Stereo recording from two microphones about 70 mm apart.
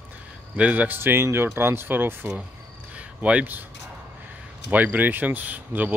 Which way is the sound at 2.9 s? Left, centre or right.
Centre.